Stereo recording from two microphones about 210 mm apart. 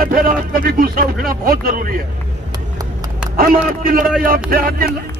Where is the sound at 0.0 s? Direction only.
45° right (ahead or behind).